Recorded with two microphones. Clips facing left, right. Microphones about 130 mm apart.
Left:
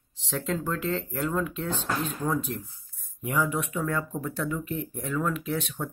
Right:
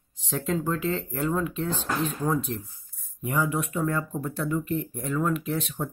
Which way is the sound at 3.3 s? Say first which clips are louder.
Right 1 dB; 10° right (ahead or behind).